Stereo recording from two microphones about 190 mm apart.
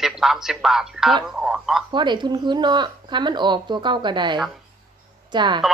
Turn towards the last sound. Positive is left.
turn(degrees=-25)  # may be behind; listen again after turning